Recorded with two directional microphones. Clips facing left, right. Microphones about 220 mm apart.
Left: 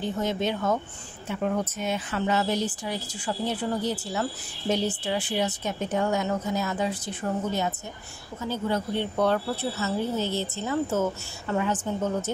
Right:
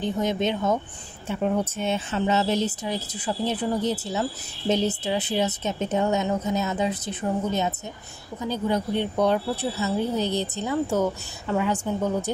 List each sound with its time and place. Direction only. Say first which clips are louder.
0.0 s speech: right 3 dB; 20° right (ahead or behind)